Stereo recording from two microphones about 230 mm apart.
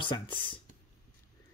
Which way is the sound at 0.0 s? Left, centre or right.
Left.